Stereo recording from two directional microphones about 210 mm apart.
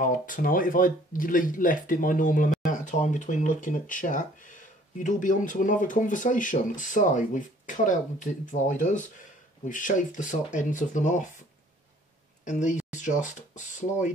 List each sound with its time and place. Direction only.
0.0 s speech: 40° left (ahead or behind)
12.4 s speech: 35° left (ahead or behind)